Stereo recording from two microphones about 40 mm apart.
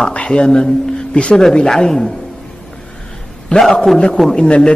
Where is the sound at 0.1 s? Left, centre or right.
Left; by 2.1 s centre.